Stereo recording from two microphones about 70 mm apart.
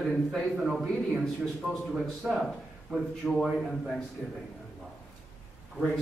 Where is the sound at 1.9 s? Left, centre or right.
Centre.